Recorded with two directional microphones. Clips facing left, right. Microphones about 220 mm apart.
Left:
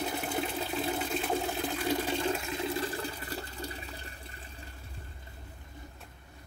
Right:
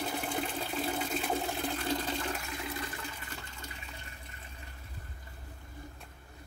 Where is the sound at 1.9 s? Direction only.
20° left (ahead or behind).